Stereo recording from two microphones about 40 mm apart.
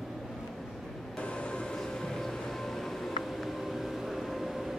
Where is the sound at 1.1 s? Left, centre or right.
Left.